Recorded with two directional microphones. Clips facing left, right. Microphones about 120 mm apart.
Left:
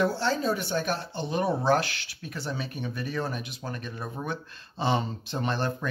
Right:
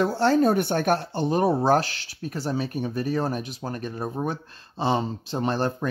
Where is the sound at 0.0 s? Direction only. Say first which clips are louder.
Right 6 dB; 55° right (ahead or behind).